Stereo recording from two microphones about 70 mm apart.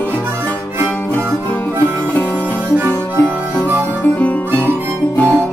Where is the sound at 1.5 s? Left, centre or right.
Left.